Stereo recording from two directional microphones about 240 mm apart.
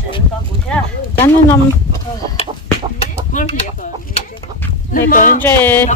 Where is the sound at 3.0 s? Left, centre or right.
Left.